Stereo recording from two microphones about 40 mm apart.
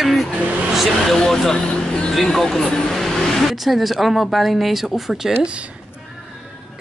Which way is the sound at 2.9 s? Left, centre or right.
Centre.